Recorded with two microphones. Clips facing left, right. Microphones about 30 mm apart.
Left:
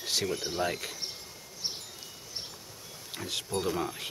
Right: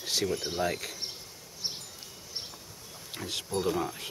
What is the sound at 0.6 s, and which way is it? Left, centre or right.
Speech, centre.